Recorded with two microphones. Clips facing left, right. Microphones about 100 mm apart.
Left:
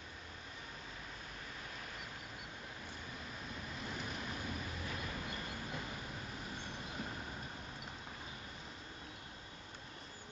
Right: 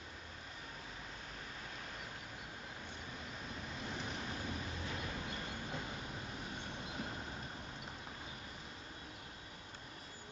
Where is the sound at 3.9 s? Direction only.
25° right (ahead or behind).